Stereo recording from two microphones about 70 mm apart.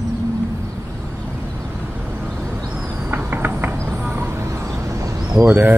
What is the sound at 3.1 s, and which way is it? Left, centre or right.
Mechanisms, right.